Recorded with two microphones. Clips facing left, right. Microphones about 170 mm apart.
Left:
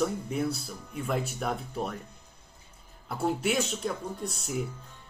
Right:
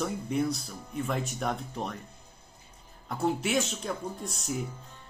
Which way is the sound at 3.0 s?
Centre (ahead or behind).